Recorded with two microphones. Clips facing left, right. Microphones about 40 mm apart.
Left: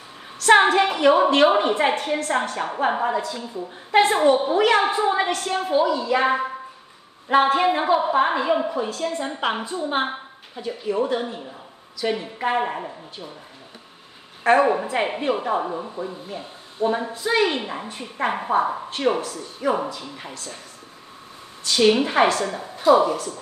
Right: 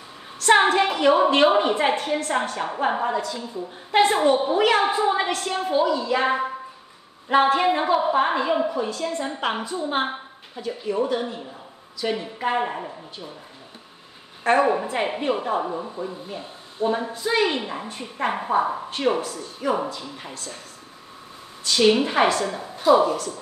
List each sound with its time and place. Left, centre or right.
0.6 s a woman's voice: centre
14.6 s a woman's voice: centre
21.6 s a woman's voice: centre
23.0 s a woman's voice: left